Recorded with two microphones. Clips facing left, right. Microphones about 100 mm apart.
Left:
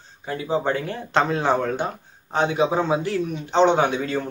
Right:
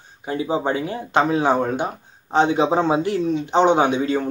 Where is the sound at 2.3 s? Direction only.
20° right (ahead or behind).